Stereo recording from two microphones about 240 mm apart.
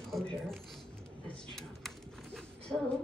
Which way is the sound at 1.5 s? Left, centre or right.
Centre.